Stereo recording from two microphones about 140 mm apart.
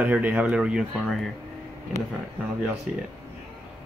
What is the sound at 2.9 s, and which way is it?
Speech, 10° right (ahead or behind).